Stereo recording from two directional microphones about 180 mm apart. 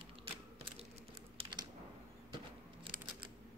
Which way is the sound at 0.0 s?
30° right (ahead or behind).